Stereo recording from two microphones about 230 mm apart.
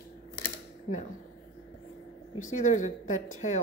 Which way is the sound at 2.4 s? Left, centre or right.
Left.